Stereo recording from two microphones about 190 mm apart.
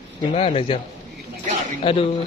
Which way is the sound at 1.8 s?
30° left (ahead or behind).